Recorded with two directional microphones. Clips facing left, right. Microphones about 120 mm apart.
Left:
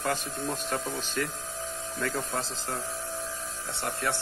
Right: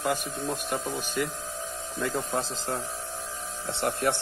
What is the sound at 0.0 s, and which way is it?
Speech, 10° right (ahead or behind).